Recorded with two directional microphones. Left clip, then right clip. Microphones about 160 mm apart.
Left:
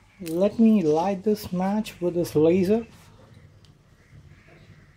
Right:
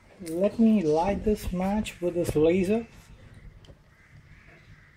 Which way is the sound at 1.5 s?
5° left (ahead or behind).